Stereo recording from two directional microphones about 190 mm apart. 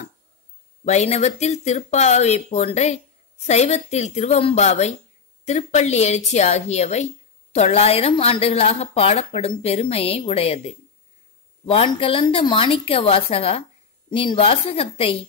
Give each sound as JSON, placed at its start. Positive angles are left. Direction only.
{"t": 0.8, "sound": "a woman's voice", "side_deg": 35}